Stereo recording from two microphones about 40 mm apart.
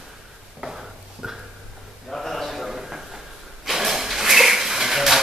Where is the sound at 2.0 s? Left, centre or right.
Centre.